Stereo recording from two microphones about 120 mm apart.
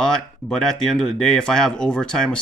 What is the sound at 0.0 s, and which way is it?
Speech, 5° left (ahead or behind).